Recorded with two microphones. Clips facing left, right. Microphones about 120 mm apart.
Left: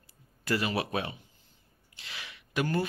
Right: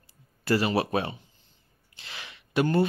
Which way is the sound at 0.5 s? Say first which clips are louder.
Right 5 dB; 35° right (ahead or behind).